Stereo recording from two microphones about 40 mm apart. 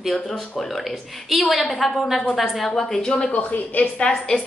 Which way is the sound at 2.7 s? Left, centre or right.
Centre.